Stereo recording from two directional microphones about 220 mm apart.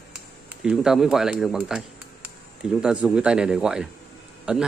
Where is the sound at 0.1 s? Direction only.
5° right (ahead or behind).